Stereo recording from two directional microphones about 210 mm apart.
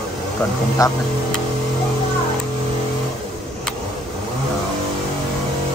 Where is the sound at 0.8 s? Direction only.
15° left (ahead or behind).